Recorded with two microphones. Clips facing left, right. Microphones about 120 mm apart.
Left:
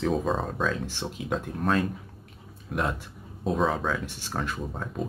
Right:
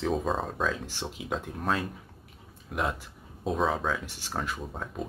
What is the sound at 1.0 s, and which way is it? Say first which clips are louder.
Speech: left 3 dB; 15° right (ahead or behind).